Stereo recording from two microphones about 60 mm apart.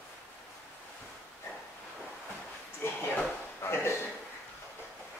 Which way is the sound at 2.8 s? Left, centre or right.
Left.